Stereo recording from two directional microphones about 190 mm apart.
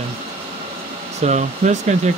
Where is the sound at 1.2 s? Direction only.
35° right (ahead or behind).